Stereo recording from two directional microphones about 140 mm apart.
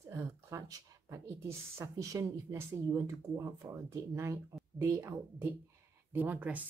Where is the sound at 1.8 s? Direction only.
20° right (ahead or behind).